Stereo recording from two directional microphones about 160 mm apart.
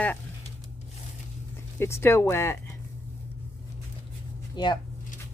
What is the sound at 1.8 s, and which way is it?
Speech, 15° left (ahead or behind).